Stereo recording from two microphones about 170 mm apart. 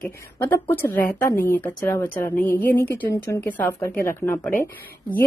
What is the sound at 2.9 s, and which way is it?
Speech, 10° left (ahead or behind).